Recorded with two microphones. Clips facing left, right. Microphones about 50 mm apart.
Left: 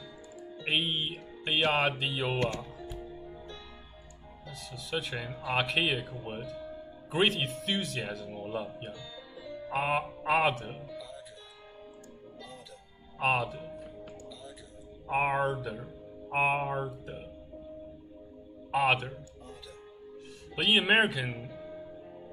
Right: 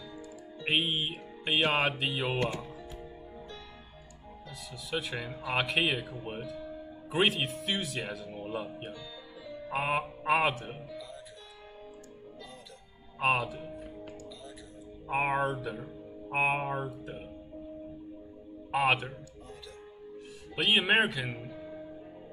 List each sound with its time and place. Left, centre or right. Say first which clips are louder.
0.6 s music: right 1 dB; centre
4.5 s speech: even; centre
13.2 s speech: even; centre
15.0 s speech: left 1 dB; centre
18.7 s speech: even; centre
20.5 s speech: left 1 dB; centre